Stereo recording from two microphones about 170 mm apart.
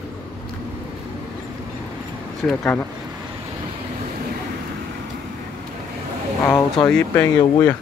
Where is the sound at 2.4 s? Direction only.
5° left (ahead or behind).